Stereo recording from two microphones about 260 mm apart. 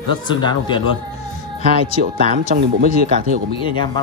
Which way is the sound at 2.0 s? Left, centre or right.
Right.